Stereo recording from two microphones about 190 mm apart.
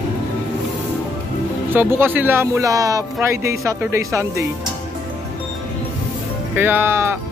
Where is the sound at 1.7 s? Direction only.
10° right (ahead or behind).